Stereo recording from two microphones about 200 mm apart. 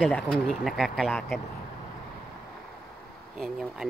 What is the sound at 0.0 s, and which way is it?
Speech, 5° left (ahead or behind).